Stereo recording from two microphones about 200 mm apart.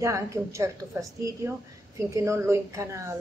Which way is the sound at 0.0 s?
15° right (ahead or behind).